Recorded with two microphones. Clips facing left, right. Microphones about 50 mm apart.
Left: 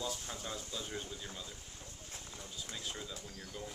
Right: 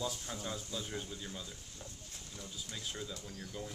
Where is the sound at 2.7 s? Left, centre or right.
Centre.